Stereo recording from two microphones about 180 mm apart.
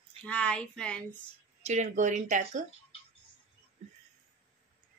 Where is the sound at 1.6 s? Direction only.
40° right (ahead or behind).